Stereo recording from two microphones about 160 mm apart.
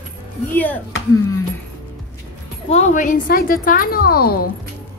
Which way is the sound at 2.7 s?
50° left (ahead or behind).